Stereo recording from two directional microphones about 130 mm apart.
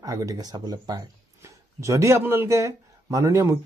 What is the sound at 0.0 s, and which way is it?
Speech, 25° right (ahead or behind).